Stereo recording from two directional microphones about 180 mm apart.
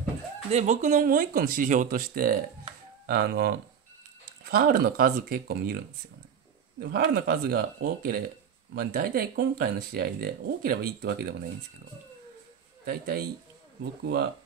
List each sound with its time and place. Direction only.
0.5 s speech: 40° right (ahead or behind); by 5.8 s 60° right (ahead or behind)
6.8 s speech: 60° right (ahead or behind)
12.8 s speech: 60° right (ahead or behind)